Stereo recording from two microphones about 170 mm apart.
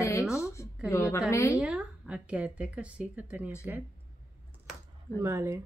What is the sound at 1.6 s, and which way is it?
Speech, 5° right (ahead or behind).